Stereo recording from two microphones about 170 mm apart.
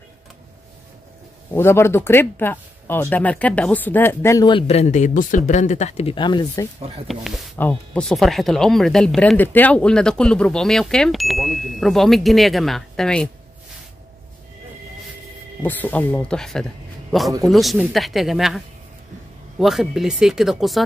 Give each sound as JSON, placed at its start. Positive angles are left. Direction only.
{"t": 1.5, "sound": "speech", "side_deg": 15}
{"t": 4.5, "sound": "speech", "side_deg": 35}
{"t": 7.1, "sound": "speech", "side_deg": 0}
{"t": 15.6, "sound": "speech", "side_deg": 10}
{"t": 19.6, "sound": "speech", "side_deg": 0}